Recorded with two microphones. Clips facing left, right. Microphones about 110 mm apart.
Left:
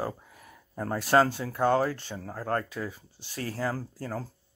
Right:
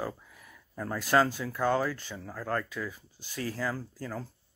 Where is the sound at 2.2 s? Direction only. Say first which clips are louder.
Left 3 dB; 40° left (ahead or behind).